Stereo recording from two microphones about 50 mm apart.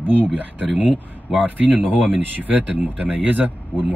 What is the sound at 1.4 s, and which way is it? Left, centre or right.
Speech, right.